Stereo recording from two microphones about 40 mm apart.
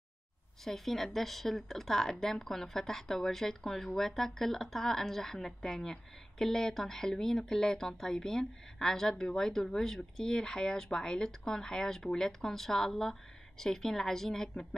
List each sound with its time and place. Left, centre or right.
0.7 s speech: centre